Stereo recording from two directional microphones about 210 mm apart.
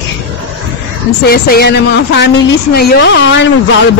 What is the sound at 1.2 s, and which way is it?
A man's voice, 50° left (ahead or behind).